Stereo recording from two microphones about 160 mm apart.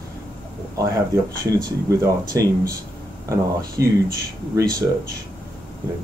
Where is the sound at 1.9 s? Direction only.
20° right (ahead or behind).